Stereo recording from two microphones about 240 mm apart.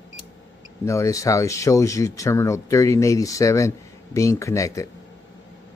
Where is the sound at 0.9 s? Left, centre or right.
Centre.